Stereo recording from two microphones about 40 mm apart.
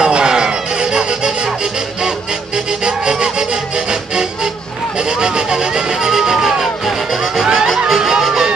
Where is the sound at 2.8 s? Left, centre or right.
Right.